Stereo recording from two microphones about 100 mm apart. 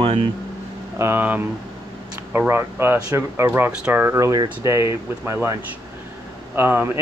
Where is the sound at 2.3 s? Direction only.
25° right (ahead or behind).